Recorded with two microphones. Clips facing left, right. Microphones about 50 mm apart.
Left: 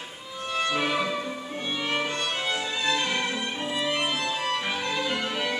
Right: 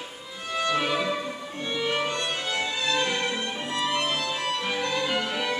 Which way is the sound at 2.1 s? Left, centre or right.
Left.